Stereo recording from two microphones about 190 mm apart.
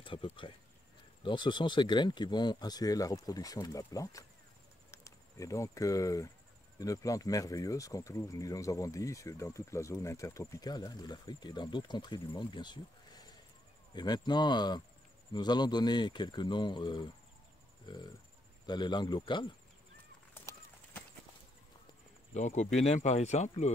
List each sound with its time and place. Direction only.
0.0 s speech: 25° left (ahead or behind)
22.3 s speech: 35° left (ahead or behind)